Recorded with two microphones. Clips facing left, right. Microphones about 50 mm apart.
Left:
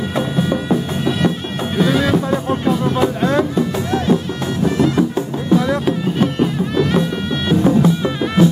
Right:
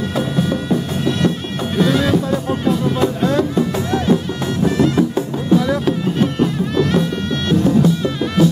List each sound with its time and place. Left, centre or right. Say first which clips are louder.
0.1 s music: left 1 dB; centre